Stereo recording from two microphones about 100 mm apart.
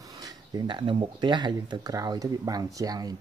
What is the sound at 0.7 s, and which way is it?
Speech, 55° right (ahead or behind).